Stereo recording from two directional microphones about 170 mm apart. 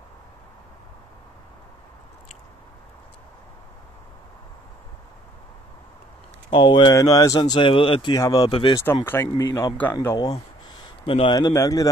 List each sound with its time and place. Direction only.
6.5 s speech: 25° left (ahead or behind)
9.0 s speech: 15° left (ahead or behind)
9.9 s speech: 20° left (ahead or behind)